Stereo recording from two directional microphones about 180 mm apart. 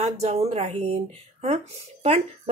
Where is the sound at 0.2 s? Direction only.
35° right (ahead or behind).